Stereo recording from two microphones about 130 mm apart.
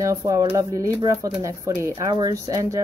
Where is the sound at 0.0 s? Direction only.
25° right (ahead or behind).